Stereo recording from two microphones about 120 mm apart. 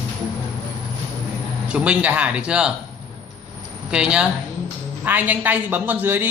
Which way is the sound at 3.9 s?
10° right (ahead or behind).